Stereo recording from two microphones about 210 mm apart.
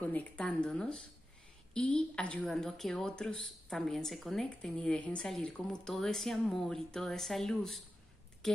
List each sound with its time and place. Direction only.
0.1 s a woman's voice: 5° left (ahead or behind)